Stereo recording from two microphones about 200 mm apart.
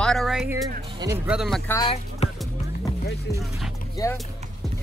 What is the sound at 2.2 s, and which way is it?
Music, 30° left (ahead or behind).